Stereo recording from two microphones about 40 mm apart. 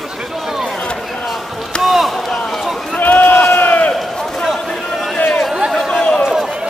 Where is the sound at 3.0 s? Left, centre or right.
Left.